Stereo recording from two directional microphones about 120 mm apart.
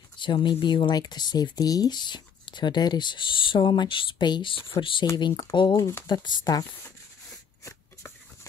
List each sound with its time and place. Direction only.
0.2 s speech: 40° left (ahead or behind)
5.0 s speech: 35° left (ahead or behind)